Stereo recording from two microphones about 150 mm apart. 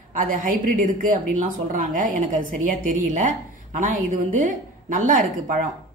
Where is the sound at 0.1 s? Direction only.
65° right (ahead or behind).